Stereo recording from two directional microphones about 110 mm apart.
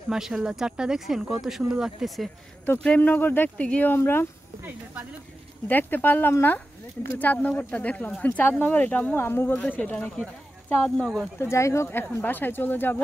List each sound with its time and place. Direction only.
0.1 s speech: 5° right (ahead or behind)
2.6 s speech: 15° left (ahead or behind)
5.7 s speech: 15° left (ahead or behind)
11.3 s speech: 25° left (ahead or behind)